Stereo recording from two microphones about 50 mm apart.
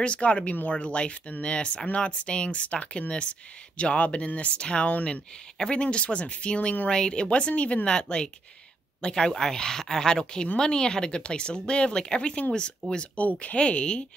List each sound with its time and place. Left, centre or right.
0.0 s speech: left